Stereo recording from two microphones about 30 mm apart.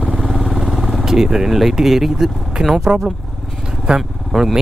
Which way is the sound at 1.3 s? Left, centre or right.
Centre.